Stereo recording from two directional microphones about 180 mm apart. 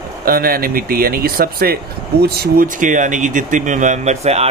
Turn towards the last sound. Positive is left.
turn(degrees=-35)  # may be behind; listen again after turning